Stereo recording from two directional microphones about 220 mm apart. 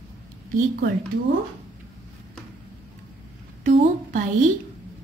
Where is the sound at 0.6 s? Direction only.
45° right (ahead or behind).